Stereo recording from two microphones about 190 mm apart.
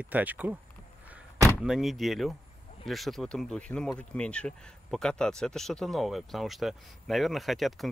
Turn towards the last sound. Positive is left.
turn(degrees=0)  # may be behind; listen again after turning